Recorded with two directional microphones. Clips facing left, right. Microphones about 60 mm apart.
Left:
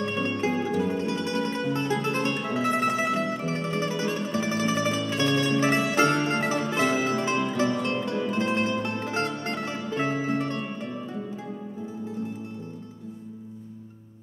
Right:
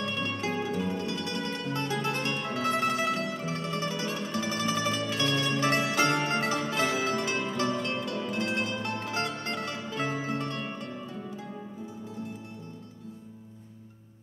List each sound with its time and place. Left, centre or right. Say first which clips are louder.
0.0 s music: left 5 dB; left